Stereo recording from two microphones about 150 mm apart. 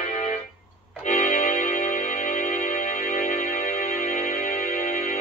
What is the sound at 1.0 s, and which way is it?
Music, 60° left (ahead or behind).